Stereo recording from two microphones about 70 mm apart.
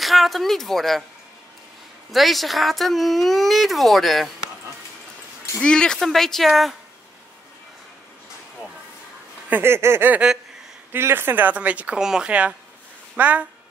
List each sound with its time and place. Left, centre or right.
0.0 s a woman's voice: centre
2.0 s speech: centre
5.6 s speech: centre
9.5 s a sound: right
10.9 s speech: right
12.0 s a woman's voice: centre
12.3 s speech: centre